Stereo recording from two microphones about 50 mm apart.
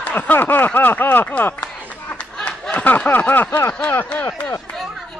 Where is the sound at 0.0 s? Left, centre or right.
Left.